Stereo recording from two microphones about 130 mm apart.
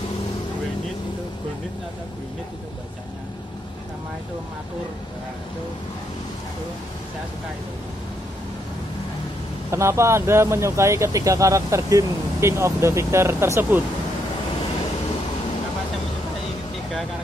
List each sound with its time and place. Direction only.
9.7 s speech: 20° right (ahead or behind)